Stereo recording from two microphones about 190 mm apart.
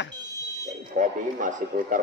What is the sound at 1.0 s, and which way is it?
Speech, 45° right (ahead or behind).